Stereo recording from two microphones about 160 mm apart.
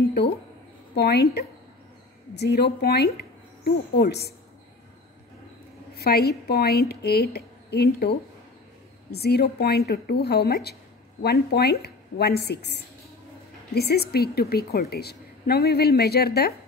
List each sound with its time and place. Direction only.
0.9 s speech: 90° left
5.9 s a woman's voice: 85° left